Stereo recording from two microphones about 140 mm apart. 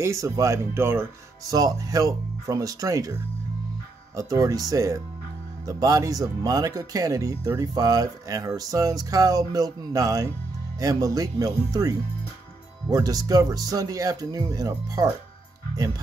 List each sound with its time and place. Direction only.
0.0 s speech: 20° right (ahead or behind)
4.2 s speech: 25° right (ahead or behind)
12.9 s speech: 25° right (ahead or behind)